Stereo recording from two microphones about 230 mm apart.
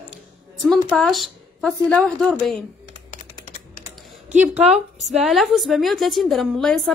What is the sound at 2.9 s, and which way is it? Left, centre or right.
Typing, left.